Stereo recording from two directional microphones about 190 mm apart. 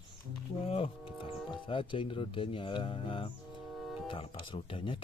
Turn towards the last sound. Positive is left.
turn(degrees=25)  # may be behind; listen again after turning